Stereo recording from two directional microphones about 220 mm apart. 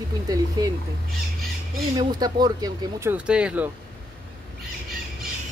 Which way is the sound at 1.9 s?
15° right (ahead or behind).